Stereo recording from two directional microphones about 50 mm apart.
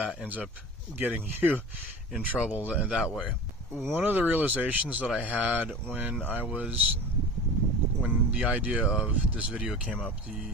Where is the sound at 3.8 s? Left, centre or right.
Right.